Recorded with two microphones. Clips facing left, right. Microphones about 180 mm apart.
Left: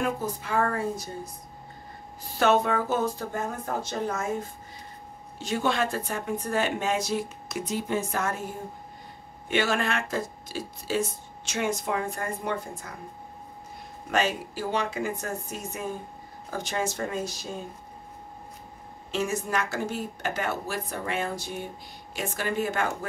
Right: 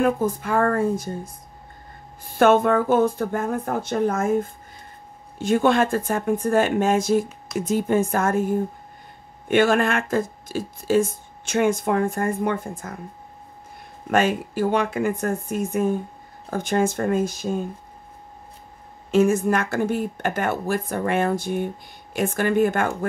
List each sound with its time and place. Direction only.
0.0 s speech: 50° right (ahead or behind)
2.3 s speech: 50° right (ahead or behind)
14.1 s speech: 50° right (ahead or behind)
19.0 s speech: 50° right (ahead or behind)